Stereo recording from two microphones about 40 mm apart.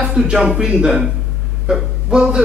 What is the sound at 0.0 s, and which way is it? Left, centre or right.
Speech, centre.